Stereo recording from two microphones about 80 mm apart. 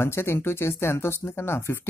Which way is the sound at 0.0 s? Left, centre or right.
Left.